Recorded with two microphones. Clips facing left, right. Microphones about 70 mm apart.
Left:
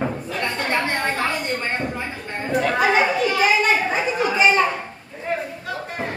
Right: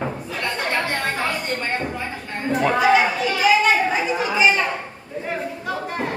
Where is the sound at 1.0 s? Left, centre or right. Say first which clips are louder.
Left 1 dB; centre.